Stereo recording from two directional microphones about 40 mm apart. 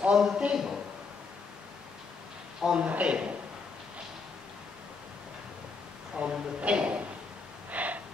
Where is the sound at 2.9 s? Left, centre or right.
Right.